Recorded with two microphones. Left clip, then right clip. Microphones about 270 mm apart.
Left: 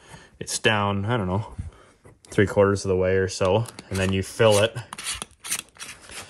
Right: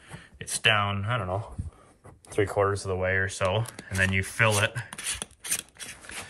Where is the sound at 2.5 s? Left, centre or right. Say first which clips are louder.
Left 7 dB; left.